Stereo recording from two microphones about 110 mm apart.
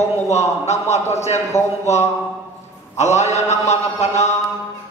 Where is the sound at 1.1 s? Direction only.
90° left.